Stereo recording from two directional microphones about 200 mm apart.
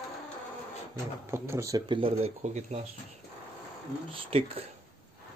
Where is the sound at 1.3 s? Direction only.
15° right (ahead or behind); by 2.8 s 35° right (ahead or behind).